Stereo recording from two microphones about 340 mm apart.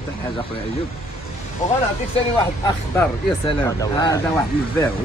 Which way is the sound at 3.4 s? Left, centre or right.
Centre.